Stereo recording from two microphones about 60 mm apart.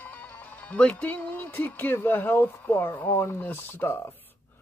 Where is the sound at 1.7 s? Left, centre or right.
Left.